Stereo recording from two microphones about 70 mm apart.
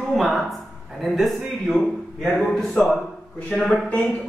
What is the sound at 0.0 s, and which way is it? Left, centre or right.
A man's voice, centre.